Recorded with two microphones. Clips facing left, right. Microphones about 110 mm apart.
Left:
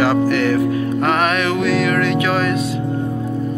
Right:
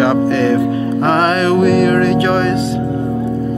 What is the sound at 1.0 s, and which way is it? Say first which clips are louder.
Music: right 5 dB; 30° right (ahead or behind).